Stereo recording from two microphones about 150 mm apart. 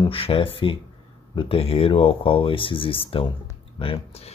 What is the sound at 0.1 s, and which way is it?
Speech, 35° left (ahead or behind).